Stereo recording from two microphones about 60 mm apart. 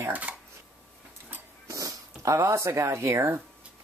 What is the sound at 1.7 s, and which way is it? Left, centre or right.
Speech, right.